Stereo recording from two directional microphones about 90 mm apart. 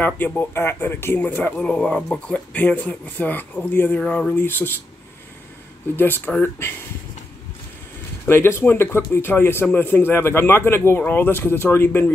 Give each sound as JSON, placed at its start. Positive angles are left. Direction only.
{"t": 0.0, "sound": "speech", "side_deg": 20}
{"t": 5.9, "sound": "speech", "side_deg": 25}
{"t": 8.3, "sound": "speech", "side_deg": 30}